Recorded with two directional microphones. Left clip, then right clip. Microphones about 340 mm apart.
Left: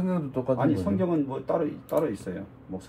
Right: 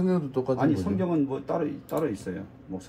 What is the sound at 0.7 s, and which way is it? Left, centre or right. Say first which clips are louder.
Speech: left 1 dB; right.